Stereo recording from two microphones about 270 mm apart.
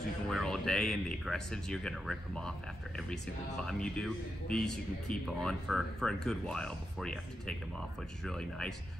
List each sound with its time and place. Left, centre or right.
0.3 s a man's voice: centre
3.6 s a man's voice: centre